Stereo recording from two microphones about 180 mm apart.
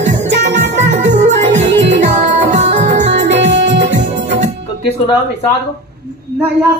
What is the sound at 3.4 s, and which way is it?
Music, 75° right (ahead or behind).